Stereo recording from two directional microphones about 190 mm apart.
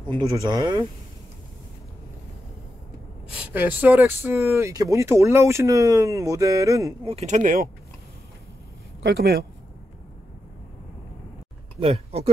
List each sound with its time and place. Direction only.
0.1 s speech: 20° right (ahead or behind)
3.3 s speech: 10° right (ahead or behind)
7.1 s speech: 35° right (ahead or behind)
9.0 s speech: 60° right (ahead or behind)
11.8 s speech: 30° right (ahead or behind)